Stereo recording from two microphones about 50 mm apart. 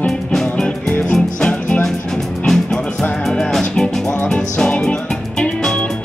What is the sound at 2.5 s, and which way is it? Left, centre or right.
Music, centre.